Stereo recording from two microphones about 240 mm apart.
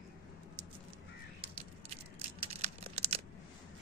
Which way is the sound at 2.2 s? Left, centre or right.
Right.